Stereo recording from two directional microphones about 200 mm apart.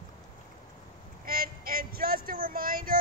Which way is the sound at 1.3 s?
45° right (ahead or behind).